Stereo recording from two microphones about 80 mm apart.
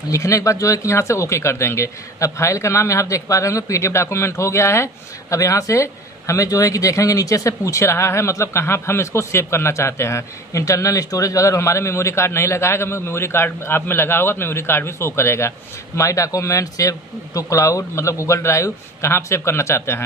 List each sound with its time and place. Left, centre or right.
0.1 s speech: left